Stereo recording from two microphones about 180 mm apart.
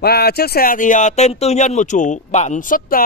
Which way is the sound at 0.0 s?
60° left (ahead or behind).